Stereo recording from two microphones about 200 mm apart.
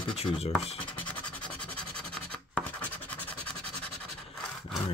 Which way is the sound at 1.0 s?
5° left (ahead or behind).